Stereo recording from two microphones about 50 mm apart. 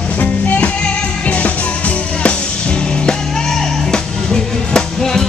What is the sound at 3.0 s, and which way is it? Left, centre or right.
Music, centre.